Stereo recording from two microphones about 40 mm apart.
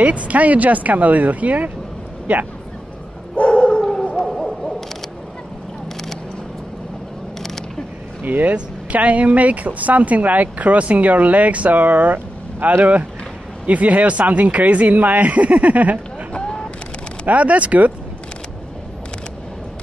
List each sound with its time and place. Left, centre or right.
0.0 s speech: right
3.4 s dog: left
3.7 s howl: centre
4.3 s hoot: centre
8.2 s speech: right
17.3 s speech: right